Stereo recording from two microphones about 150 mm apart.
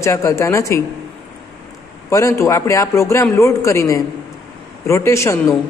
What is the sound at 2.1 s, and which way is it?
A woman's voice, 20° left (ahead or behind).